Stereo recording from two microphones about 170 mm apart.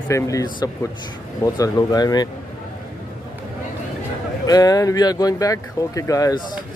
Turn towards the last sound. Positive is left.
turn(degrees=25)  # may be behind; listen again after turning